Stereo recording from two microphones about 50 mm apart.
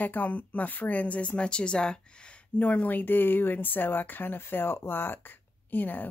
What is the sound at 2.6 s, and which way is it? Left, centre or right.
Speech, left.